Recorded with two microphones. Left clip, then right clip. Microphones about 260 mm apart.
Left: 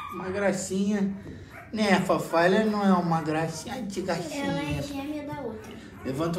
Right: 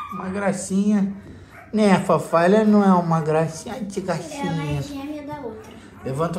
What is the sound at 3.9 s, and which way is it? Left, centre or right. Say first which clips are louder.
Speech: right 4 dB; left.